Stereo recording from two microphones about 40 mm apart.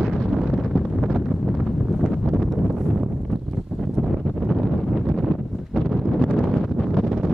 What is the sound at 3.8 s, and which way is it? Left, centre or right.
Wind noise, centre.